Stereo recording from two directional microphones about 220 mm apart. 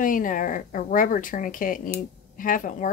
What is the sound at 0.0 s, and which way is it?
Speech, 35° left (ahead or behind).